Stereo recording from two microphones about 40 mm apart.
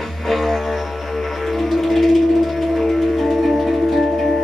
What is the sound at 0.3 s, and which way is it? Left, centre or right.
Music, centre.